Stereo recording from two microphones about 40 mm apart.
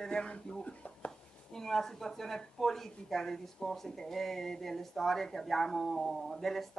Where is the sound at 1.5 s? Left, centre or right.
Centre.